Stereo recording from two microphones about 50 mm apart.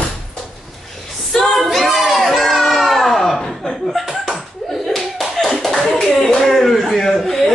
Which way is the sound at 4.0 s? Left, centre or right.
Centre.